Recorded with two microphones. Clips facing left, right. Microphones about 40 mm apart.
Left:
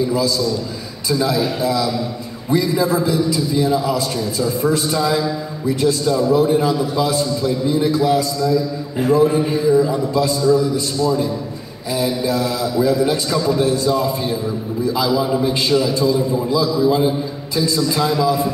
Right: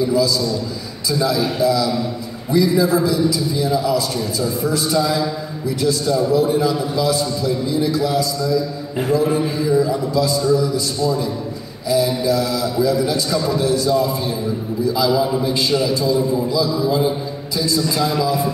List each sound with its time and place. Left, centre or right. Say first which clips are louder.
1.6 s a man's voice: right 2 dB; left
11.9 s a man's voice: right 2 dB; left
16.4 s a man's voice: left 2 dB; left